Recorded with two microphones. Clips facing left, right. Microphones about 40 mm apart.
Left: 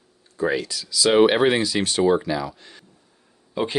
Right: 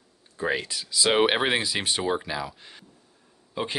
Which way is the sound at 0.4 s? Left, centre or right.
Right.